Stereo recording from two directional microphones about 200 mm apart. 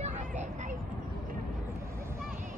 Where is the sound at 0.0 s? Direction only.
35° right (ahead or behind).